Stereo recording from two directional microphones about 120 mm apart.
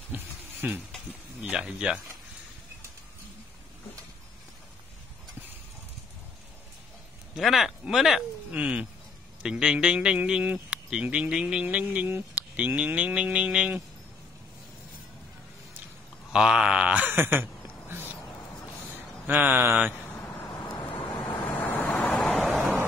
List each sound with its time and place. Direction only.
0.1 s a sound: 15° right (ahead or behind)
1.4 s a man's voice: 5° right (ahead or behind)
7.3 s a man's voice: centre (ahead or behind)
16.3 s a sound: 5° right (ahead or behind)
19.2 s a man's voice: 15° right (ahead or behind)
20.9 s vehicle: 45° left (ahead or behind)
21.5 s vehicle: 15° left (ahead or behind)
22.1 s vehicle: 5° left (ahead or behind)